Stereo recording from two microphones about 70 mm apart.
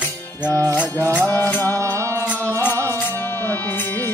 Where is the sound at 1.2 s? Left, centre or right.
Left.